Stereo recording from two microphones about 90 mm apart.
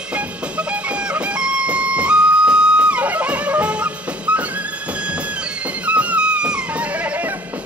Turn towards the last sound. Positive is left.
turn(degrees=-15)  # may be behind; listen again after turning